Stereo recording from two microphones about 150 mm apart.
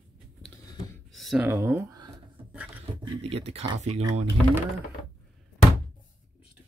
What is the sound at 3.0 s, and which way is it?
Speech, 40° right (ahead or behind).